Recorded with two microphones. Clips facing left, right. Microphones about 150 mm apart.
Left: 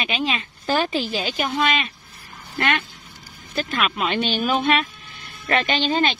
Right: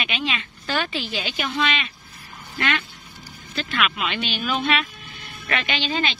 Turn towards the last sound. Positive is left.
turn(degrees=45)  # may be behind; listen again after turning